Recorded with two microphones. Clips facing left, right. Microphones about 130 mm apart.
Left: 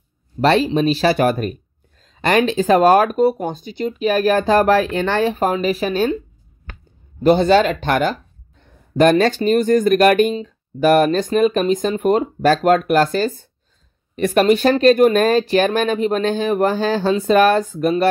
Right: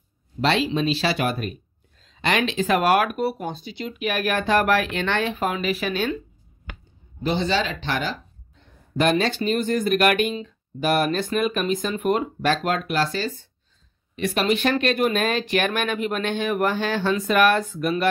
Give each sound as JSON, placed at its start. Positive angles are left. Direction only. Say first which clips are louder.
{"t": 0.4, "sound": "speech", "louder": "left 6 dB", "side_deg": 45}
{"t": 3.4, "sound": "speech", "louder": "left 7 dB", "side_deg": 45}
{"t": 7.2, "sound": "speech", "louder": "left 10 dB", "side_deg": 50}